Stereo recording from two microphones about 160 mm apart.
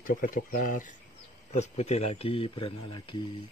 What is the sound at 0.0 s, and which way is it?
Speech, 60° left (ahead or behind).